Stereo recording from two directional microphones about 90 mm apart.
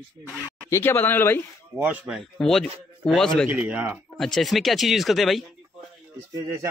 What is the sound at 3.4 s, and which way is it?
Speech, 10° right (ahead or behind).